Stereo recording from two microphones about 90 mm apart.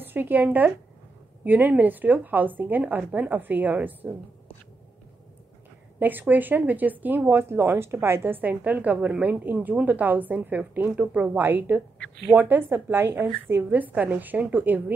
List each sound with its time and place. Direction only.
0.0 s speech: 20° right (ahead or behind)
5.9 s speech: 20° right (ahead or behind)